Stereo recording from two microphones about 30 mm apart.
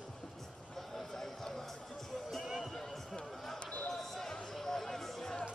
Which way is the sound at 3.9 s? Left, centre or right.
Centre.